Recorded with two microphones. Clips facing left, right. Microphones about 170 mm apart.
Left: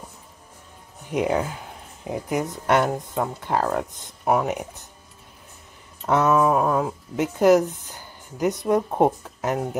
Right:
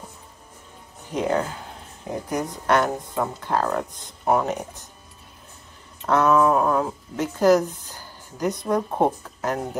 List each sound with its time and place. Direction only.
1.1 s speech: 10° left (ahead or behind)
6.0 s speech: 10° left (ahead or behind)
7.3 s a sound: 20° left (ahead or behind)
8.6 s speech: 15° left (ahead or behind)